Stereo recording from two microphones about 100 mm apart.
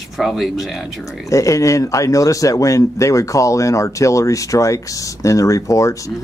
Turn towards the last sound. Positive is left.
turn(degrees=35)  # may be behind; listen again after turning